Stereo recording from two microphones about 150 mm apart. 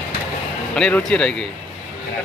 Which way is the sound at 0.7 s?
5° left (ahead or behind).